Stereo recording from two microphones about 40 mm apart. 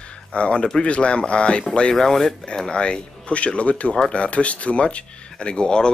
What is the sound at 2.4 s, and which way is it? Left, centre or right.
Speech, left.